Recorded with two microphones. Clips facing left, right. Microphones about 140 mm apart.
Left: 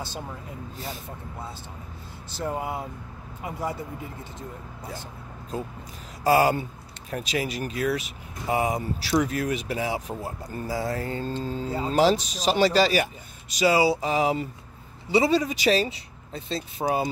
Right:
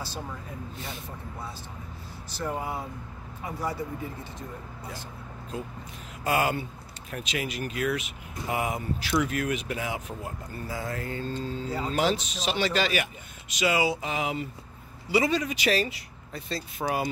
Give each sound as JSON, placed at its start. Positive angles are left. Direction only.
{"t": 5.5, "sound": "speech", "side_deg": 35}